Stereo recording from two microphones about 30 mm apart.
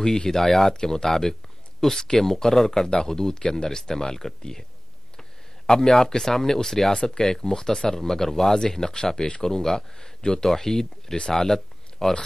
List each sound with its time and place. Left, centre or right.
0.0 s speech: left
0.4 s speech: centre
5.7 s speech: centre
11.3 s a sound: centre